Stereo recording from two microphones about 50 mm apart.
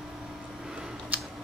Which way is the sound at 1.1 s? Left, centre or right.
Right.